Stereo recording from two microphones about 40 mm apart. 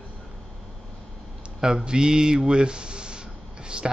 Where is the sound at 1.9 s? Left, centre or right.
Centre.